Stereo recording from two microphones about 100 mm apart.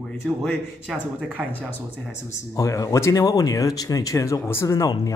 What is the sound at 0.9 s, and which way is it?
Speech, 15° right (ahead or behind).